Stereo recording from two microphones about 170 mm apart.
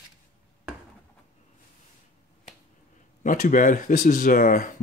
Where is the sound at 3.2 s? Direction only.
50° left (ahead or behind).